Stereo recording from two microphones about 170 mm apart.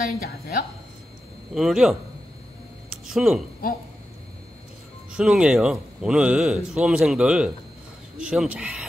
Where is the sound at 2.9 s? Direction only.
5° right (ahead or behind).